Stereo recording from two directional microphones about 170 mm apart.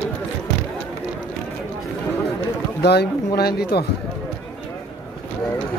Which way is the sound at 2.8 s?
75° left (ahead or behind).